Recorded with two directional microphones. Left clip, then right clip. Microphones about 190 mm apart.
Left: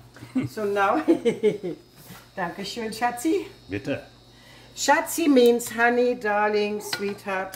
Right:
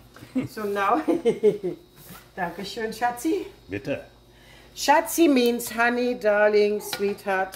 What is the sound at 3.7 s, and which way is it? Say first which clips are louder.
Speech: even; 5° left (ahead or behind).